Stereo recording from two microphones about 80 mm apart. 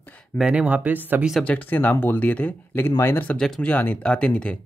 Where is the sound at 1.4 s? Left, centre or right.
Centre.